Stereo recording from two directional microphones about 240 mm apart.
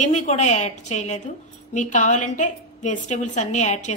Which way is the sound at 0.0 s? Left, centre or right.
Left.